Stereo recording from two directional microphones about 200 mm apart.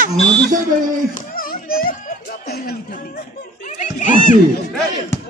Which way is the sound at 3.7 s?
40° left (ahead or behind).